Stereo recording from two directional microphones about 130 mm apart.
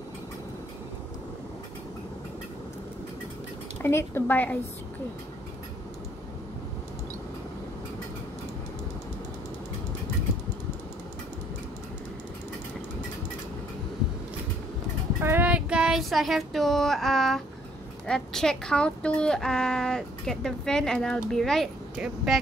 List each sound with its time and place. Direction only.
3.8 s speech: 20° left (ahead or behind)
15.1 s a woman's voice: 15° right (ahead or behind)